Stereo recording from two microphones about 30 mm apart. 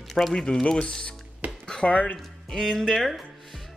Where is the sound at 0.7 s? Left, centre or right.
Left.